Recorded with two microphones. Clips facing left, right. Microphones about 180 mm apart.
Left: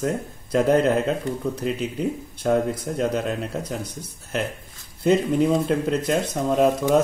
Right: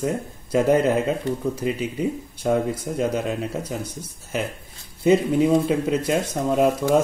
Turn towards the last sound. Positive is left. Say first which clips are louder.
# even
turn(degrees=-5)  # may be behind; listen again after turning